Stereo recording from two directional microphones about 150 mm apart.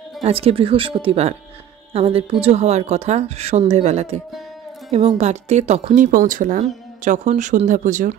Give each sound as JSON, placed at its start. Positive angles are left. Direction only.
{"t": 0.2, "sound": "speech", "side_deg": -40}